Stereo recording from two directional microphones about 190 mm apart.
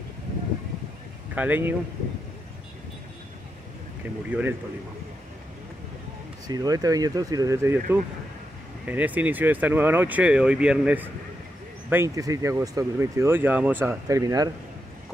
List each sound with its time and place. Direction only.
1.3 s speech: 10° right (ahead or behind)
4.3 s speech: 10° right (ahead or behind)
6.4 s speech: 20° right (ahead or behind)